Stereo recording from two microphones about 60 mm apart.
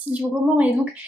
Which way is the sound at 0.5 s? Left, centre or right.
Right.